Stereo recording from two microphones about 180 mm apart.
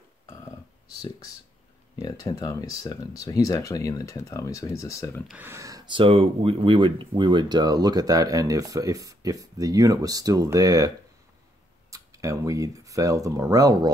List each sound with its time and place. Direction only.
2.0 s speech: 20° left (ahead or behind)
5.3 s speech: 15° right (ahead or behind)
11.9 s speech: 15° right (ahead or behind)